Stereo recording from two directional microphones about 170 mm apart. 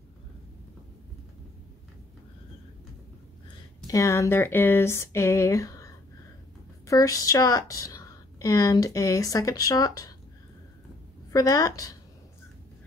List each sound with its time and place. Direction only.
3.8 s speech: 20° left (ahead or behind)
6.9 s a woman's voice: 20° left (ahead or behind)
11.3 s a woman's voice: 20° left (ahead or behind)